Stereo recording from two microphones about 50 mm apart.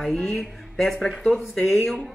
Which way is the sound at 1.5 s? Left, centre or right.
Left.